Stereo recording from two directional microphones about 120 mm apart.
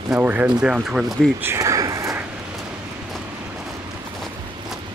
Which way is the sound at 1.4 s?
25° right (ahead or behind).